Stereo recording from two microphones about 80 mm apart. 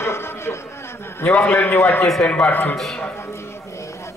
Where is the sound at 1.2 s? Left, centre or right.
Left.